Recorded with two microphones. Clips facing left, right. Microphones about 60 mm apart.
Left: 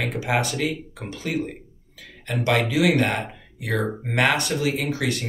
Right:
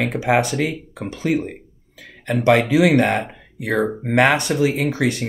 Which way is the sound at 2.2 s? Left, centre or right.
Right.